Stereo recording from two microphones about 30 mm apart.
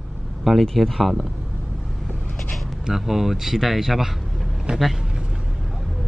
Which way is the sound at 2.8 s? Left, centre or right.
Centre.